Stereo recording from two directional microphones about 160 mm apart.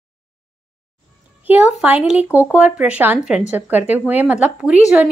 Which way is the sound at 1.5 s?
10° right (ahead or behind).